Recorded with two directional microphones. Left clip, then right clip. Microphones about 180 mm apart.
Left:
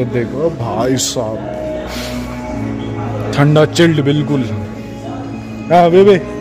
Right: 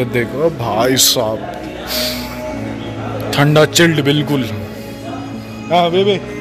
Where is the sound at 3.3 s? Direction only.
10° left (ahead or behind).